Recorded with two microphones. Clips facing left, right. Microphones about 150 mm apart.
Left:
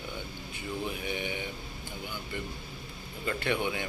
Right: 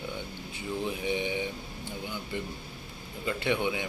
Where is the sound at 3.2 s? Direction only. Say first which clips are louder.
Right 2 dB; 15° right (ahead or behind).